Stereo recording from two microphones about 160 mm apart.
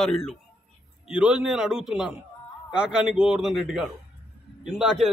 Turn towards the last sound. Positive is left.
turn(degrees=-5)  # may be behind; listen again after turning